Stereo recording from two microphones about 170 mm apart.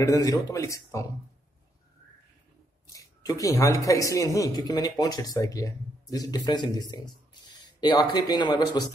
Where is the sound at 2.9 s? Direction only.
20° left (ahead or behind).